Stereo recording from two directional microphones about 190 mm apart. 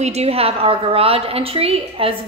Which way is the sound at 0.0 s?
35° right (ahead or behind).